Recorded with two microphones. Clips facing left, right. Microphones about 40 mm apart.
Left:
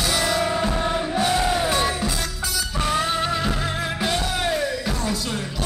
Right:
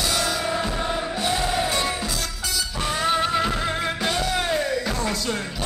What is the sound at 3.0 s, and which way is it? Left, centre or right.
Music, centre.